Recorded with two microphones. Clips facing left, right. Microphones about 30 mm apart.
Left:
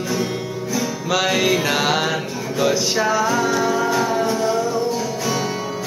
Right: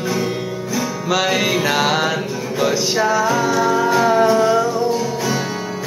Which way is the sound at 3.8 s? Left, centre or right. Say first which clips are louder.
Right 5 dB; centre.